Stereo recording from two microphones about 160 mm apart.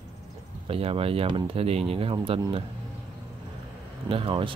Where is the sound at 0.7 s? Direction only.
35° right (ahead or behind).